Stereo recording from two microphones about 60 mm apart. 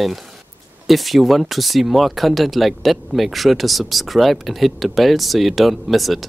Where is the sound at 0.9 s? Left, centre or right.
Centre.